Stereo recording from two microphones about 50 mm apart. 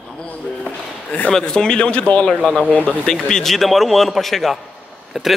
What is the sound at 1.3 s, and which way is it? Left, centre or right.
Speech, centre.